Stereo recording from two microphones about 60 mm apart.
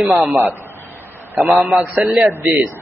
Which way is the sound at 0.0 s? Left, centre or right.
Centre.